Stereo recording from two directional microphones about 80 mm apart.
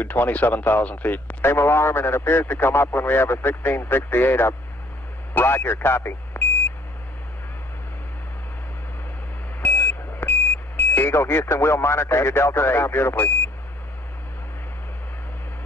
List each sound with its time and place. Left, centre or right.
0.0 s speech: left
9.6 s vehicle: left
11.0 s speech: left